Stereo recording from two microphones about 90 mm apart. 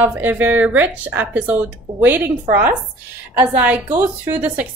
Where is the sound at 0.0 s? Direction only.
20° right (ahead or behind).